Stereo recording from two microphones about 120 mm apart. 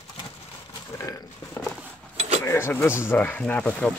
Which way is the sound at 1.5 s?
10° left (ahead or behind).